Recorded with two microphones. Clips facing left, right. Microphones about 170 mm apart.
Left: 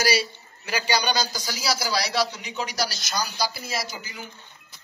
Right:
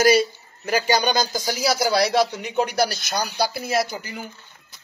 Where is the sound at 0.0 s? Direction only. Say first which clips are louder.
Right 8 dB; 45° right (ahead or behind).